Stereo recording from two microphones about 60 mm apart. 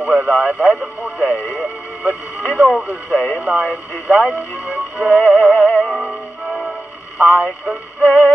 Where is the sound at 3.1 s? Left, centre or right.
Left.